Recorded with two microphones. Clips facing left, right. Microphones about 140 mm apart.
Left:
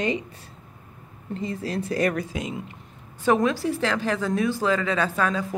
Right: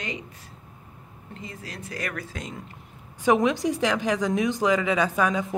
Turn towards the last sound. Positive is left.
turn(degrees=-20)  # may be behind; listen again after turning